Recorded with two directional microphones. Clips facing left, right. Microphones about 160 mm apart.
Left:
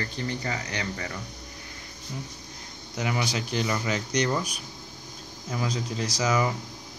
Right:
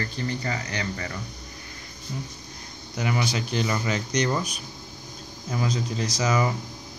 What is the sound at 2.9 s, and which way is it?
Speech, 15° left (ahead or behind).